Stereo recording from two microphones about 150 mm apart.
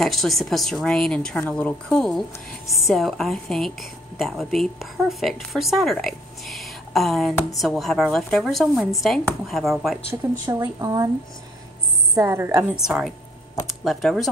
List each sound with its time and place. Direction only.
0.0 s a woman's voice: centre (ahead or behind)
10.4 s speech: 25° right (ahead or behind)
12.2 s speech: 20° right (ahead or behind)
12.7 s a woman's voice: 5° right (ahead or behind)